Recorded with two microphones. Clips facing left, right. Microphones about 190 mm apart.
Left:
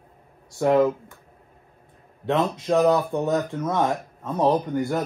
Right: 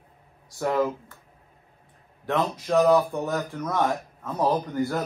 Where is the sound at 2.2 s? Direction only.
25° left (ahead or behind).